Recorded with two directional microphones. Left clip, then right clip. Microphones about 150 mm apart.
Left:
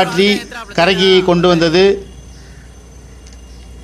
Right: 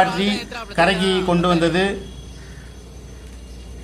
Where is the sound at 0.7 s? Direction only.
45° left (ahead or behind).